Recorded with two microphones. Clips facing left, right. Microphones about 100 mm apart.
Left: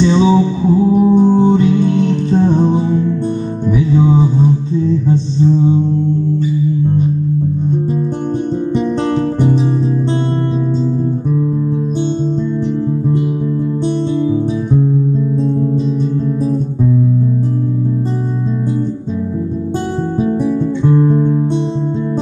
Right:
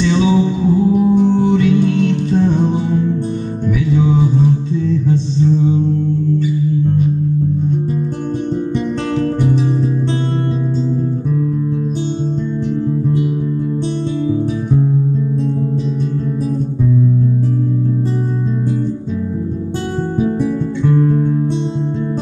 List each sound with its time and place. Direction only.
0.0 s music: 25° left (ahead or behind)
9.1 s music: 30° left (ahead or behind)